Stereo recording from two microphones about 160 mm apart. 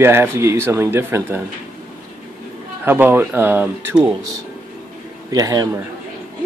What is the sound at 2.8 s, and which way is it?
Speech, 15° right (ahead or behind).